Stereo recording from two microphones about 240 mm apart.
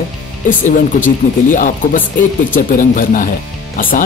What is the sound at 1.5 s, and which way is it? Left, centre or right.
Speech, left.